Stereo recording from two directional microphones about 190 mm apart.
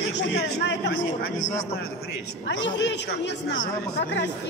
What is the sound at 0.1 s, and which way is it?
Speech, 70° left (ahead or behind).